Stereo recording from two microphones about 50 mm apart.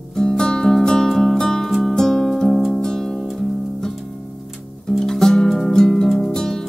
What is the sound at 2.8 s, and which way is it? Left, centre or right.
Music, centre.